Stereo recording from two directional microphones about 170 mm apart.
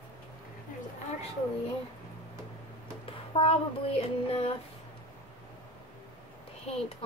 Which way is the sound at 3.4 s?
35° left (ahead or behind).